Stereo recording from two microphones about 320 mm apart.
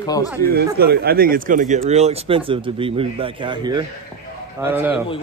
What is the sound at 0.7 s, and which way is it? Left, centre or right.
A man's voice, right.